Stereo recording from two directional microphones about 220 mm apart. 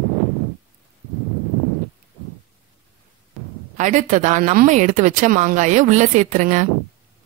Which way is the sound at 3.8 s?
35° right (ahead or behind).